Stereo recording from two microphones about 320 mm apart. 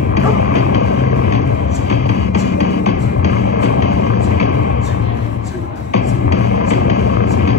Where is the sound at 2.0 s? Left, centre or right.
Left.